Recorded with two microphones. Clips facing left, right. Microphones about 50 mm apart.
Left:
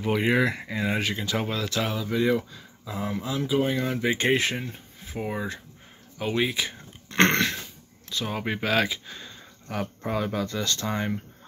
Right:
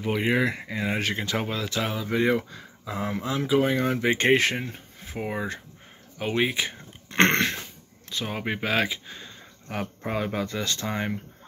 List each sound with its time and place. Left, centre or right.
0.0 s speech: centre
0.9 s speech: right
1.4 s speech: right
2.0 s speech: right
3.4 s speech: right; by 11.1 s centre